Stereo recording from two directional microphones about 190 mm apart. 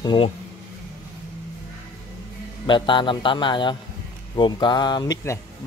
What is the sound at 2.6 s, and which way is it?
Speech, 25° left (ahead or behind).